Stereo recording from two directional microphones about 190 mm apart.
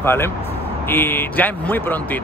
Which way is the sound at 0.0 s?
10° left (ahead or behind).